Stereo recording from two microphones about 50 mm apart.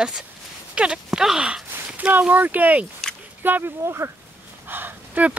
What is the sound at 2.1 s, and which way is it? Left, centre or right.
Speech, right.